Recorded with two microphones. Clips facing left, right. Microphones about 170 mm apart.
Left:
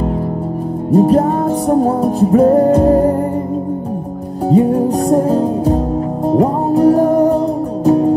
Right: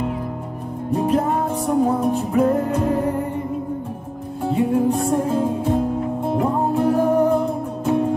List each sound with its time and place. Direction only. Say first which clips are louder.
0.9 s music: left 8 dB; 35° left (ahead or behind)
4.5 s music: left 6 dB; 40° left (ahead or behind)